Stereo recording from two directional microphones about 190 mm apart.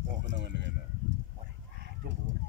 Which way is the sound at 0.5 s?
70° right (ahead or behind).